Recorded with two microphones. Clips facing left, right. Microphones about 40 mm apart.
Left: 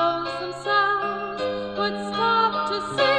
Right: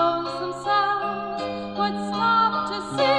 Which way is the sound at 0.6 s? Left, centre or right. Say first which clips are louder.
Left 1 dB; left.